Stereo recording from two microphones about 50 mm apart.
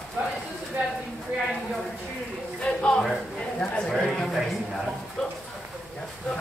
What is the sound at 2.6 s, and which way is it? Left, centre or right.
Speech, centre.